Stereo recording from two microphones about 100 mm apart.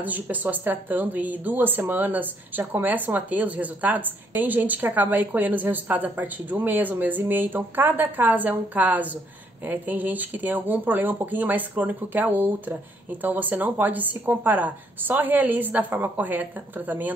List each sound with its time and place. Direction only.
0.0 s speech: 15° right (ahead or behind)